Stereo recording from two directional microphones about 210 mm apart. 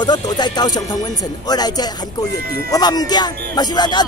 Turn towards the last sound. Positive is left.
turn(degrees=20)  # may be behind; listen again after turning